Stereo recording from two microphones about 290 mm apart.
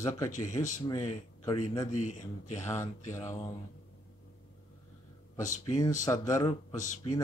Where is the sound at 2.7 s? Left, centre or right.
Centre.